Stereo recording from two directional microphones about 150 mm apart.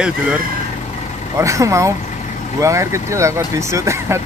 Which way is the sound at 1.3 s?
20° right (ahead or behind).